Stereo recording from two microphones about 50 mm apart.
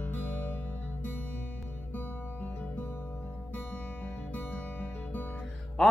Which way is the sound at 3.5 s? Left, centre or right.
Left.